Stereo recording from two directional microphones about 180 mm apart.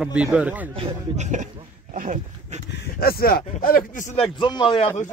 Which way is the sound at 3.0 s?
55° left (ahead or behind).